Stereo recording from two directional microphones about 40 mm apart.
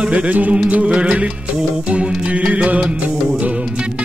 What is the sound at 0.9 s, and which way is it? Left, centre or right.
Music, right.